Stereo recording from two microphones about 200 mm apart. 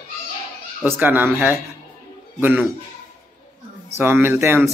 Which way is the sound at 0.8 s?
10° right (ahead or behind).